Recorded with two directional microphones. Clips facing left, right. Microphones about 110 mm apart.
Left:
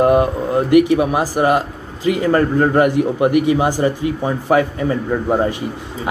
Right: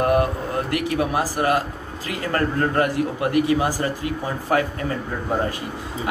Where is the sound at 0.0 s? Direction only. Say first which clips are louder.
Left 6 dB; 20° left (ahead or behind).